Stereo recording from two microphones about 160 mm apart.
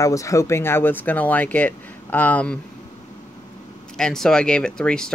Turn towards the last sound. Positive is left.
turn(degrees=5)  # may be behind; listen again after turning